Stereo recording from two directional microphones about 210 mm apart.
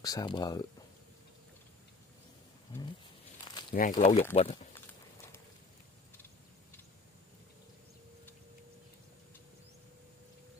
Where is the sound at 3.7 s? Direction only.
40° left (ahead or behind).